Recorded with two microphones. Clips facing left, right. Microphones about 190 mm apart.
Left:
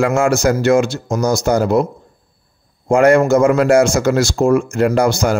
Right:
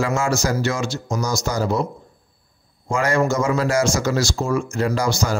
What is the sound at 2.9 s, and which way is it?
Speech, 60° left (ahead or behind).